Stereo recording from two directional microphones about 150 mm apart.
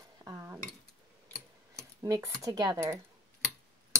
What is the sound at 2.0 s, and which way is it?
Speech, 25° right (ahead or behind).